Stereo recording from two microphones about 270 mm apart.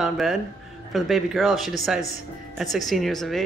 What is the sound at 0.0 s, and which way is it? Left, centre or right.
Speech, centre.